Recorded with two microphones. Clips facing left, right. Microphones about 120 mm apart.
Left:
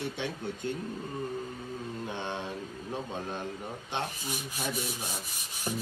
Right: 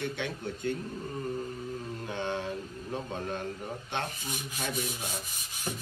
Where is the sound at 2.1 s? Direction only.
20° left (ahead or behind).